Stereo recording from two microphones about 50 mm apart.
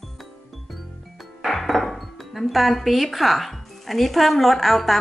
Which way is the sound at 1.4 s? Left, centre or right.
Centre.